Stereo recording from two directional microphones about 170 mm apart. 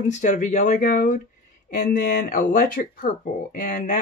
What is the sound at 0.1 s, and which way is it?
Speech, 45° left (ahead or behind).